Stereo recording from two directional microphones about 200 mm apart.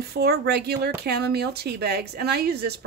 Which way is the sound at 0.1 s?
50° right (ahead or behind).